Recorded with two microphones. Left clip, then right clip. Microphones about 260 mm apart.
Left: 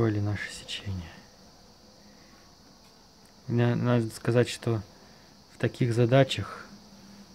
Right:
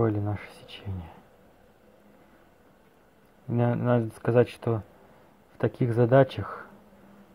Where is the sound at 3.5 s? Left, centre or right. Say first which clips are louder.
Right 2 dB; centre.